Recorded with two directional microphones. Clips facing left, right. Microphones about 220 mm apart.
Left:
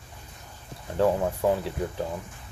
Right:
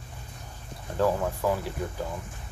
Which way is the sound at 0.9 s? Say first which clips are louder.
Left 2 dB; 20° left (ahead or behind).